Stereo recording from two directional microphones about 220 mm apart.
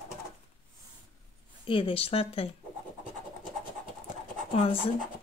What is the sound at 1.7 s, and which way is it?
Speech, 25° left (ahead or behind).